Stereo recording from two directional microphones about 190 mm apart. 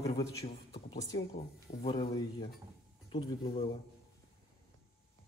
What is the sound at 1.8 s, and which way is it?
Speech, 25° left (ahead or behind).